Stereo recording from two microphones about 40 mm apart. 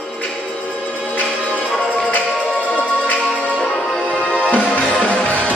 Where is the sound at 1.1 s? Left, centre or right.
Left.